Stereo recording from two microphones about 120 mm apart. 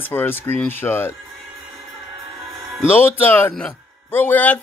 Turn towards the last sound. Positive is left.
turn(degrees=15)  # may be behind; listen again after turning